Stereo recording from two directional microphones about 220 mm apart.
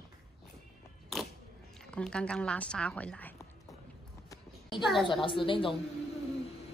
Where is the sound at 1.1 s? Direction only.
Centre (ahead or behind).